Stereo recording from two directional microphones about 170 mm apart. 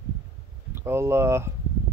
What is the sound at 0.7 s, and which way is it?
Speech, 15° right (ahead or behind).